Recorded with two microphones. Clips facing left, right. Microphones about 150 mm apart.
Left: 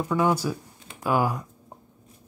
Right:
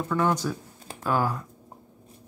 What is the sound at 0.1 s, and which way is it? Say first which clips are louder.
Speech: left 1 dB; 10° left (ahead or behind).